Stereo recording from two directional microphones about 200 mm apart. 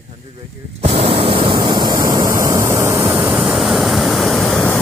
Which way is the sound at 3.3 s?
Centre (ahead or behind).